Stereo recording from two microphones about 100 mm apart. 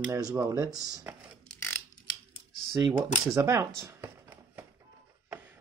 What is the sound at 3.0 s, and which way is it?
Speech, 35° right (ahead or behind).